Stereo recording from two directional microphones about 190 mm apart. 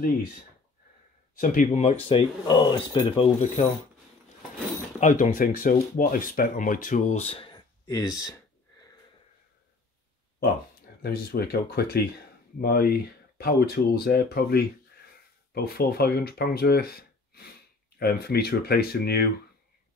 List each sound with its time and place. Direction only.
1.4 s speech: 45° left (ahead or behind)
2.0 s speech: 25° left (ahead or behind)
5.2 s speech: 45° left (ahead or behind); by 8.4 s 20° left (ahead or behind)
11.0 s speech: 55° left (ahead or behind)